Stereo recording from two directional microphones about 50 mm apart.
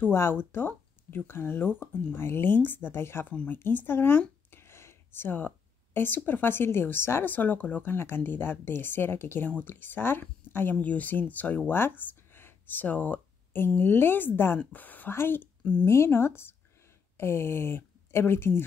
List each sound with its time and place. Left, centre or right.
0.1 s speech: left
4.5 s a sound: left
5.9 s speech: left
7.2 s speech: left
7.8 s speech: left
10.8 s speech: left
11.7 s speech: left
14.7 s speech: left
15.1 s speech: left